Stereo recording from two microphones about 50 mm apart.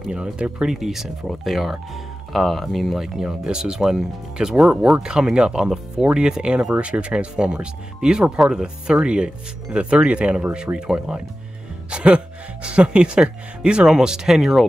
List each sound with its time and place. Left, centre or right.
0.1 s speech: centre
0.7 s speech: centre
3.2 s speech: centre
11.9 s speech: right; by 14.7 s centre